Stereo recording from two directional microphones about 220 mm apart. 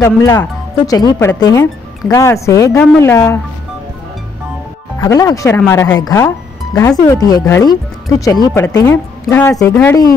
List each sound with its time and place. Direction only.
0.0 s speech: 15° left (ahead or behind)
4.9 s speech: 15° left (ahead or behind)